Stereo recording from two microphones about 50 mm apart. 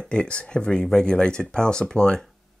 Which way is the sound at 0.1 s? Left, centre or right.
Centre.